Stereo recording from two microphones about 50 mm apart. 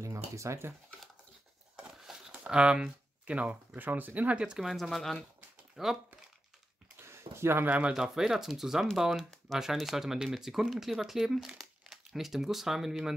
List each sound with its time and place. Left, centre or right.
0.0 s a sound: right
2.3 s speech: right
4.6 s speech: centre
5.8 s speech: centre
7.0 s a sound: right
7.9 s speech: centre